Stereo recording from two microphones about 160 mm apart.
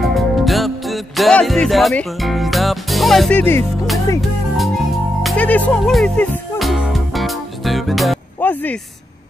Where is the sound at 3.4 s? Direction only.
15° left (ahead or behind).